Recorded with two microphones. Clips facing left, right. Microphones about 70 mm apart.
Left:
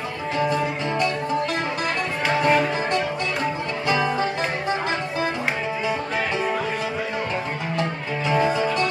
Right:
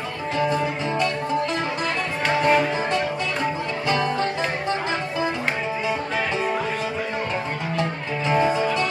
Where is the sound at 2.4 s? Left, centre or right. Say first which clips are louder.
Even; centre.